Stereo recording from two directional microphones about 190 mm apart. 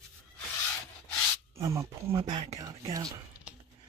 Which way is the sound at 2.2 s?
35° right (ahead or behind).